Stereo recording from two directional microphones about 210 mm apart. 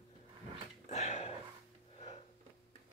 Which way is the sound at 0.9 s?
35° left (ahead or behind).